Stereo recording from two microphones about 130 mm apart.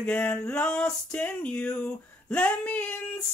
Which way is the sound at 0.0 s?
10° left (ahead or behind).